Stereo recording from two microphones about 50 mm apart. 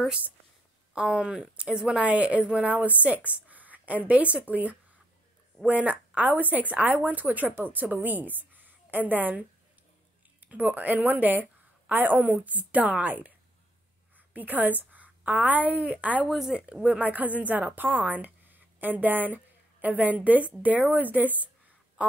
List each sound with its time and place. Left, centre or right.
0.9 s a woman's voice: centre; by 9.4 s right
10.4 s a woman's voice: right
14.3 s a woman's voice: right
16.3 s speech: centre
17.0 s a woman's voice: right